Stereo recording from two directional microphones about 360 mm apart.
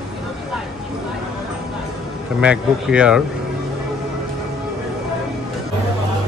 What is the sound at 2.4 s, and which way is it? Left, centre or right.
Speech, centre.